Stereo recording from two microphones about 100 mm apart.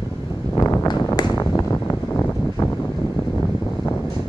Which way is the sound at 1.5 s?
25° left (ahead or behind).